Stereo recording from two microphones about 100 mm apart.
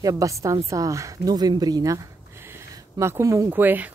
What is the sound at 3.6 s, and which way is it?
Speech, 20° right (ahead or behind).